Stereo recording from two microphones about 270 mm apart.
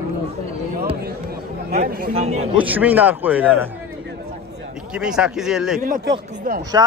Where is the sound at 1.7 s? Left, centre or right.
Right.